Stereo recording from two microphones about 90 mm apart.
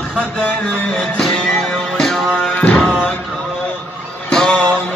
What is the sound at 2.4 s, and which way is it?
Music, 10° left (ahead or behind).